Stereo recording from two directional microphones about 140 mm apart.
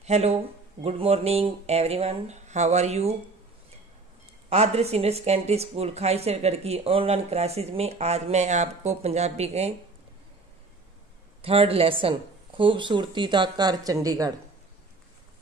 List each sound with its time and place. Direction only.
0.0 s speech: 50° right (ahead or behind)
4.5 s speech: 50° right (ahead or behind)
11.4 s speech: 40° right (ahead or behind); by 14.3 s 25° right (ahead or behind)